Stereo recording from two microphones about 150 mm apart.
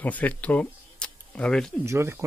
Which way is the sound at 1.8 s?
20° right (ahead or behind).